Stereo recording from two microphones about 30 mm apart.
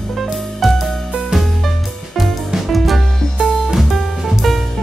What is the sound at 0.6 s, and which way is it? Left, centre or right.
Music, centre.